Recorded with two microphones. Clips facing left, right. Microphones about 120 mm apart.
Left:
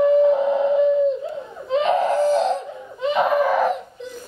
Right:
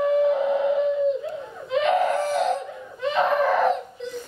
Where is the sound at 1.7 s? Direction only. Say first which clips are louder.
Left 2 dB; 30° left (ahead or behind).